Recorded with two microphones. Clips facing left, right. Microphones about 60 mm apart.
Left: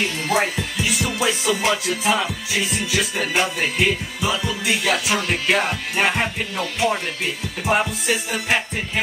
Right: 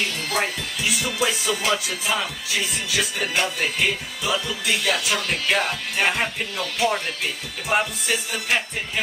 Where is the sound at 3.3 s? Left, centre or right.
Centre.